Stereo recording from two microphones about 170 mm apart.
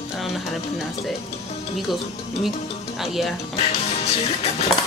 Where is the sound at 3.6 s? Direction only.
40° left (ahead or behind).